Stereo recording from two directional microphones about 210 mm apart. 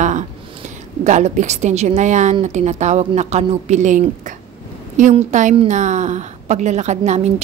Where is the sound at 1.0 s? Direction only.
35° right (ahead or behind).